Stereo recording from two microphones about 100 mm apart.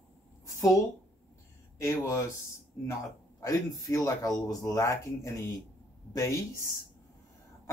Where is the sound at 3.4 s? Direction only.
35° left (ahead or behind).